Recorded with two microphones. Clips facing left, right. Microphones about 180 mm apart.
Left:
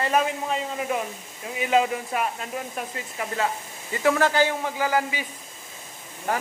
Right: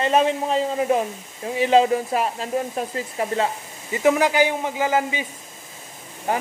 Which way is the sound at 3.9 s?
20° right (ahead or behind).